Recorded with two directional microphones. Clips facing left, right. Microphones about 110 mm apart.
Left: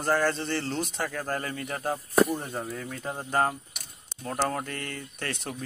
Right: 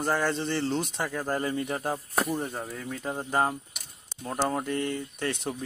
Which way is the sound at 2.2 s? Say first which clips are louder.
Even; centre (ahead or behind).